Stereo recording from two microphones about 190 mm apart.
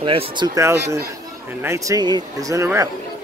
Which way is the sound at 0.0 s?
30° right (ahead or behind).